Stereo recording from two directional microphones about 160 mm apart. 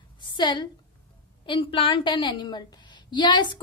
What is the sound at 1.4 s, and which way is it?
A woman's voice, 30° left (ahead or behind).